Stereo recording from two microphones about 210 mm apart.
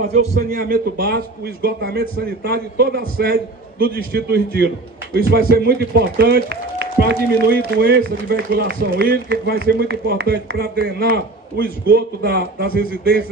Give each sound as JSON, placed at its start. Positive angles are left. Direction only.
{"t": 0.1, "sound": "a man's voice", "side_deg": -30}